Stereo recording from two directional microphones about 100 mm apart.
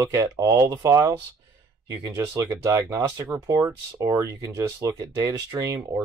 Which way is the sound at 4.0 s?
30° right (ahead or behind).